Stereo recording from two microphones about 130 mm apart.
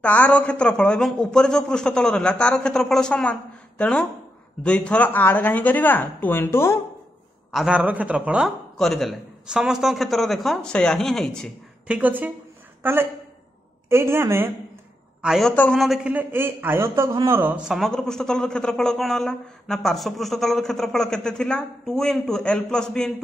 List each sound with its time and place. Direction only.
0.0 s a man's voice: 10° left (ahead or behind)
7.5 s speech: 5° right (ahead or behind)
8.7 s a man's voice: 5° left (ahead or behind)
11.9 s a woman's voice: 15° right (ahead or behind)
15.2 s a man's voice: centre (ahead or behind)
15.5 s a man's voice: 10° left (ahead or behind)
15.8 s a man's voice: centre (ahead or behind)
16.1 s a man's voice: 15° right (ahead or behind); by 23.1 s 5° left (ahead or behind)